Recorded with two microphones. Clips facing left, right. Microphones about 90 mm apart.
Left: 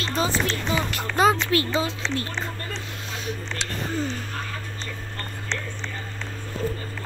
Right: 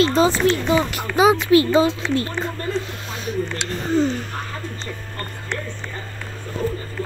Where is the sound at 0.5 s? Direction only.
10° right (ahead or behind).